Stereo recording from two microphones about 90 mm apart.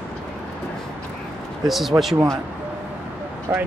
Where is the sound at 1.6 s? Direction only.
Centre (ahead or behind).